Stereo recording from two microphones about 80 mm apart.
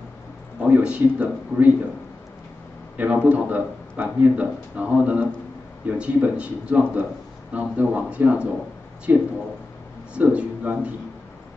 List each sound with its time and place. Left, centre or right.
0.7 s a man's voice: centre
3.3 s a man's voice: centre